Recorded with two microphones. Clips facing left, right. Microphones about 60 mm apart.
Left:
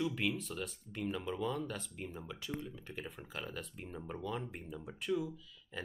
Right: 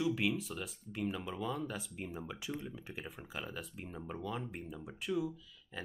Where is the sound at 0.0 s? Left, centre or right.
Centre.